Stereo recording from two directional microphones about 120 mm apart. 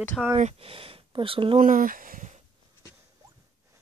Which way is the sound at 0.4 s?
60° right (ahead or behind).